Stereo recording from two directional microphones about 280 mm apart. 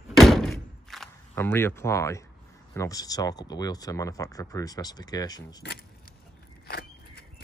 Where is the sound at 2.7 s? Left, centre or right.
Centre.